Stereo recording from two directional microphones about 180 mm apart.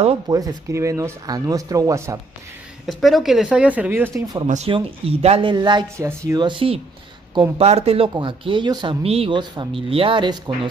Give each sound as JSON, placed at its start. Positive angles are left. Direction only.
{"t": 0.3, "sound": "speech", "side_deg": -20}
{"t": 2.9, "sound": "speech", "side_deg": 0}
{"t": 4.6, "sound": "speech", "side_deg": -30}